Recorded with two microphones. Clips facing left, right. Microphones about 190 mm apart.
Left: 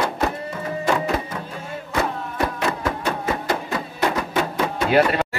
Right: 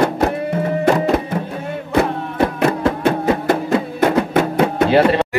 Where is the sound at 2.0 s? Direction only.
60° right (ahead or behind).